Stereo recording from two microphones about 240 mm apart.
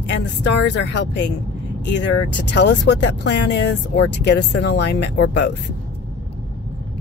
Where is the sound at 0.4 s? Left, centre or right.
Left.